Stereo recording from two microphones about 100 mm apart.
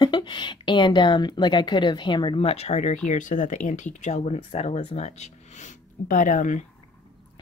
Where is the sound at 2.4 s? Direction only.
90° left.